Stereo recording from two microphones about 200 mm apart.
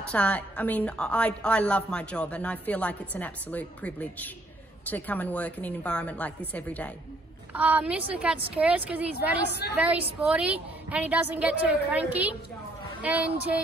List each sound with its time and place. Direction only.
0.0 s a woman's voice: 5° left (ahead or behind)
7.5 s a woman's voice: 5° right (ahead or behind)
9.5 s a woman's voice: 55° left (ahead or behind)
9.8 s a woman's voice: 5° right (ahead or behind)